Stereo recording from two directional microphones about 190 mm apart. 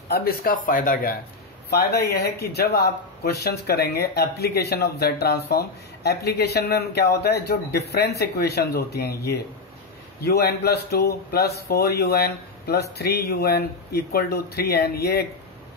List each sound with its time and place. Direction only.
0.1 s speech: 50° left (ahead or behind)